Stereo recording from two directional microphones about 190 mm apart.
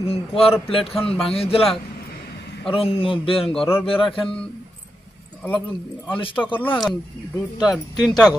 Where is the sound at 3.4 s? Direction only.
Centre (ahead or behind).